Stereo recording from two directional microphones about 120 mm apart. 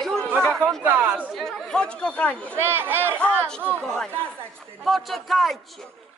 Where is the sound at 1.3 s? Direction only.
Centre (ahead or behind).